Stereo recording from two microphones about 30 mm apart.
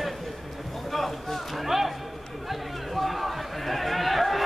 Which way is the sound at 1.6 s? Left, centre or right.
Centre.